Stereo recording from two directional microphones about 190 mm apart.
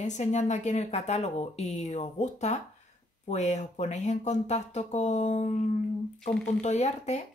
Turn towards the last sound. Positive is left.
turn(degrees=35)  # may be behind; listen again after turning